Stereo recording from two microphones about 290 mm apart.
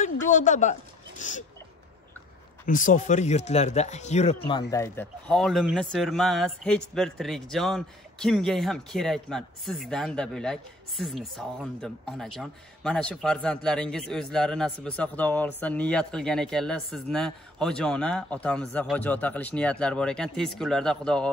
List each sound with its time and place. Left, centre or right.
0.3 s speech: left
2.6 s a man's voice: left; by 21.3 s centre